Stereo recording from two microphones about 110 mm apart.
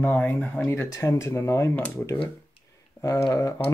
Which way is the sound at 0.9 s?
30° left (ahead or behind).